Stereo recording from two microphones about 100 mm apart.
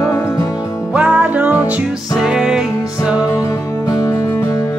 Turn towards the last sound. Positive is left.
turn(degrees=35)  # may be behind; listen again after turning